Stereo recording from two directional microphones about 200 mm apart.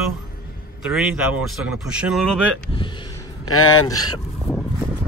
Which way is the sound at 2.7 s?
25° left (ahead or behind).